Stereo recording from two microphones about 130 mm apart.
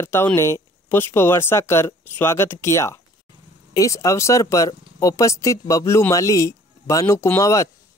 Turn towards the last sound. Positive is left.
turn(degrees=25)  # may be behind; listen again after turning